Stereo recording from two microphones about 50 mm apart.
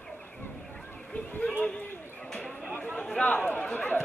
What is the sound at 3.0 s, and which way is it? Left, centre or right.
Chatter, centre.